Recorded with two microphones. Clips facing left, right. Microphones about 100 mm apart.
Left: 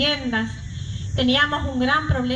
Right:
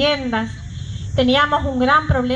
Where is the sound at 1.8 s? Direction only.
70° right (ahead or behind).